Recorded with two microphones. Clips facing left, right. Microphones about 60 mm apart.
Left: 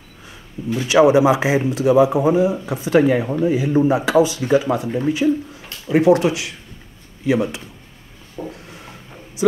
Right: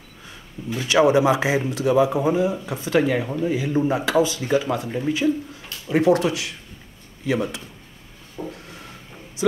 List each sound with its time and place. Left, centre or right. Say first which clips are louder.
0.7 s speech: left 4 dB; centre
5.9 s speech: left 4 dB; centre
8.6 s a sound: left 2 dB; centre